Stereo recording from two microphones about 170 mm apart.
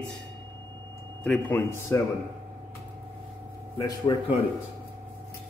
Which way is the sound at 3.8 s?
20° left (ahead or behind).